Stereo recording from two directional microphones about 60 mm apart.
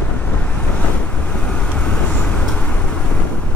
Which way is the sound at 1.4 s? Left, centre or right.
Centre.